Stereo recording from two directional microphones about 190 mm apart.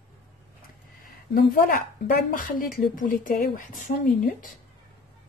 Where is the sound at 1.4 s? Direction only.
50° left (ahead or behind).